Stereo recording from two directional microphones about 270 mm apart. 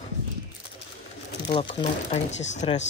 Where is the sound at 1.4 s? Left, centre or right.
Centre.